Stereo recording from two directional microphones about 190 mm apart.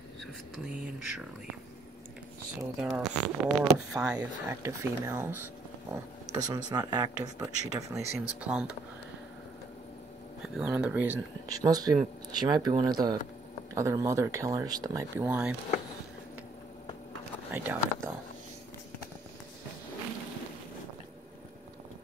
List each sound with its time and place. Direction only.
2.9 s speech: centre (ahead or behind)
10.4 s speech: 5° right (ahead or behind); by 15.2 s 20° right (ahead or behind)
15.2 s speech: 5° right (ahead or behind)
17.5 s speech: 10° right (ahead or behind)